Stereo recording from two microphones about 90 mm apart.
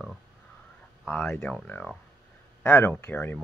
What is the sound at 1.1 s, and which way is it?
Speech, 10° left (ahead or behind).